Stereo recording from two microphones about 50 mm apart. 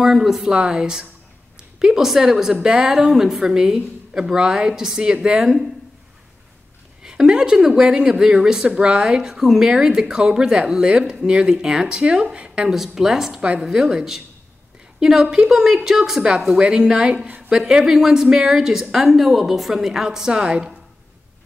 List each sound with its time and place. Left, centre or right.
0.0 s a woman's voice: centre
7.0 s a woman's voice: centre
12.6 s a woman's voice: centre
13.4 s a woman's voice: right